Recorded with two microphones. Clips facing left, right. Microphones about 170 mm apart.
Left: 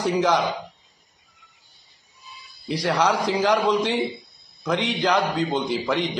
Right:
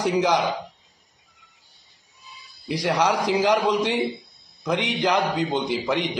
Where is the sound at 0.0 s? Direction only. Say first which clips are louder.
Even; 20° right (ahead or behind).